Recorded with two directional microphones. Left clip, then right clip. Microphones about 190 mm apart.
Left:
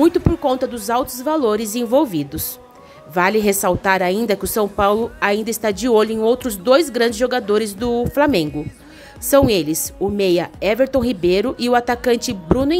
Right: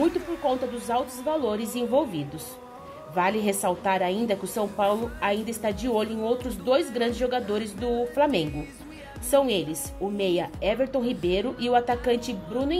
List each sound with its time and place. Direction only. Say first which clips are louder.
0.0 s a woman's voice: left 9 dB; 35° left (ahead or behind)